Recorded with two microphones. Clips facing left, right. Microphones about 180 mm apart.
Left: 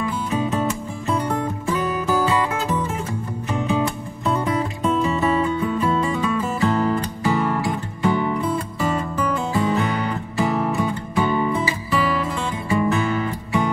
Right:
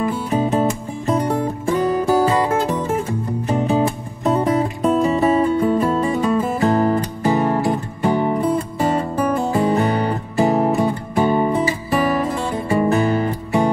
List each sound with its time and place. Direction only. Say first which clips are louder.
0.0 s music: right 4 dB; 40° right (ahead or behind)